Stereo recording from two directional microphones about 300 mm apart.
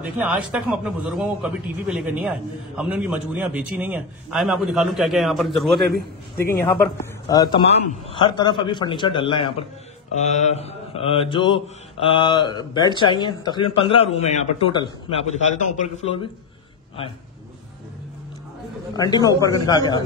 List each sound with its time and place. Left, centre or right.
0.2 s a man's voice: centre
10.1 s mantra: left
12.0 s speech: centre
18.9 s speech: centre